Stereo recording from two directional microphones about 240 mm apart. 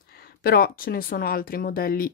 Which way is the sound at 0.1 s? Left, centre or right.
Left.